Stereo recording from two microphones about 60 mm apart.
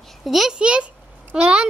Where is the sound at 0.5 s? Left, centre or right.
Centre.